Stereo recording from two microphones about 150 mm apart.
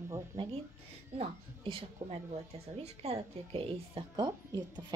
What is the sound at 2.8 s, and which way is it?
A woman's voice, 40° right (ahead or behind).